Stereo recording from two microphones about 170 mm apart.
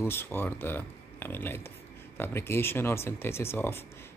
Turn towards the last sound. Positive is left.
turn(degrees=15)  # may be behind; listen again after turning